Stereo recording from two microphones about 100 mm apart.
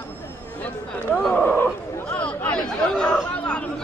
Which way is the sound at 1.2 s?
10° left (ahead or behind).